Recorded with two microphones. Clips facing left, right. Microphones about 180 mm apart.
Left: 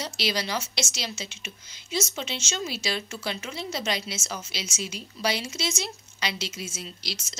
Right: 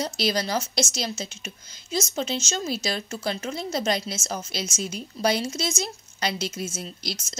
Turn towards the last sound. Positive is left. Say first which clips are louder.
# right 3 dB
turn(degrees=-50)  # may be behind; listen again after turning